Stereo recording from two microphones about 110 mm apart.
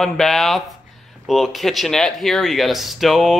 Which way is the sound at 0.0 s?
5° left (ahead or behind).